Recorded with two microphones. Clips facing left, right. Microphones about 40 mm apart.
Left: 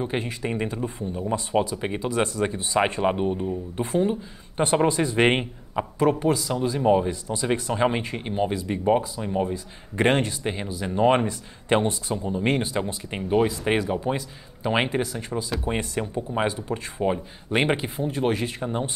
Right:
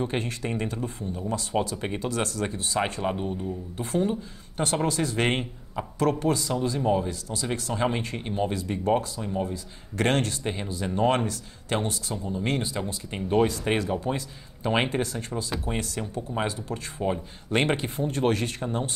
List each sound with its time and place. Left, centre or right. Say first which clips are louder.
0.0 s a man's voice: left 1 dB; centre
13.3 s speech: left 2 dB; centre
15.6 s a man's voice: left 4 dB; left